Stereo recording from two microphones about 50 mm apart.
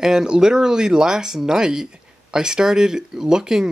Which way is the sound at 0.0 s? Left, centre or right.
Centre.